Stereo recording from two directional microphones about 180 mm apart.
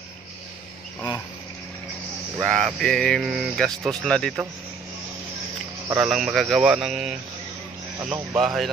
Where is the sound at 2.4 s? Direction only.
Centre (ahead or behind).